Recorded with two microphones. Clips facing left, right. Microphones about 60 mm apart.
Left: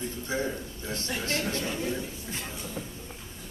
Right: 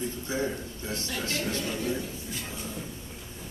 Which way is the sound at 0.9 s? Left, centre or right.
Left.